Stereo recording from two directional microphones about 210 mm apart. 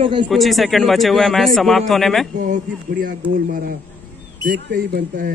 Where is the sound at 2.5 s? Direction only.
40° right (ahead or behind).